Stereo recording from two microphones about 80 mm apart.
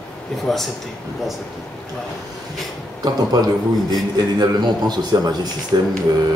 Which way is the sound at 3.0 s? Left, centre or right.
Right.